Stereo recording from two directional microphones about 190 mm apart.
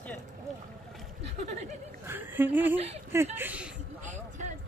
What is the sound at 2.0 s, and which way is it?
Speech, 10° right (ahead or behind).